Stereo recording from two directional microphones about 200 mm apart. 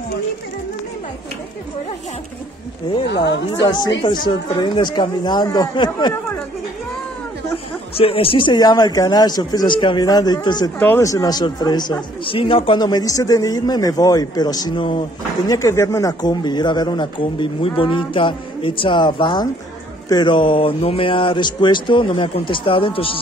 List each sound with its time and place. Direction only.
3.6 s speech: 20° left (ahead or behind)
7.5 s speech: 30° left (ahead or behind)